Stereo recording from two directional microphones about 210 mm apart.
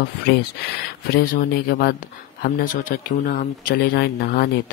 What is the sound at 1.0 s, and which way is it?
Speech, 45° left (ahead or behind).